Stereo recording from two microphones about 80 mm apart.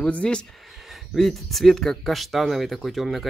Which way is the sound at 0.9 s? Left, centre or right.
Centre.